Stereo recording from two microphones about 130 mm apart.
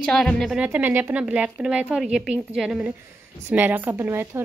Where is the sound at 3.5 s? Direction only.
15° right (ahead or behind).